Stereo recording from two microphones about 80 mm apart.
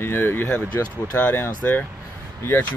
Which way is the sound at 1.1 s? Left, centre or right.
Left.